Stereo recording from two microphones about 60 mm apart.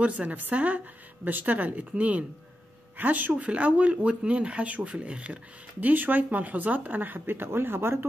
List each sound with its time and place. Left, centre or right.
0.0 s speech: right